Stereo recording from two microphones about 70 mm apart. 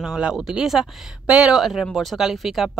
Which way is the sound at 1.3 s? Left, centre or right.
Centre.